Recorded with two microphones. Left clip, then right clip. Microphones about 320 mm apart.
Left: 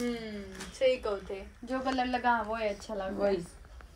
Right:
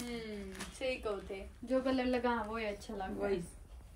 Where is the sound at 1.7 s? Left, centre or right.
Centre.